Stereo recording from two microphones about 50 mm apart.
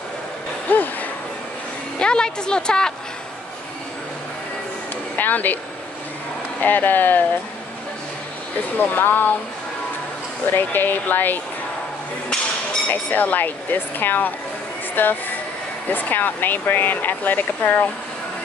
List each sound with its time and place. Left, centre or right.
0.7 s a sound: left
2.0 s a woman's voice: centre
5.1 s speech: left
6.6 s speech: left
8.7 s speech: left
10.5 s speech: left
12.9 s speech: left